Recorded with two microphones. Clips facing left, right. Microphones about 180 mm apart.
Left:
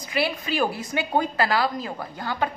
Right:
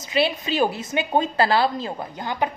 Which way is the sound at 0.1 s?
20° right (ahead or behind).